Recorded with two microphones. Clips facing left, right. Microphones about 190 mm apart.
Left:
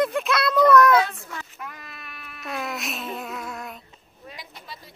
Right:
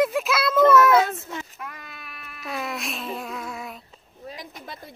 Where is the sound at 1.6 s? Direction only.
Centre (ahead or behind).